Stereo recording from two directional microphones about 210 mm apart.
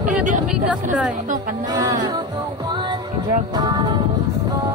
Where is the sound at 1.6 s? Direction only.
15° right (ahead or behind).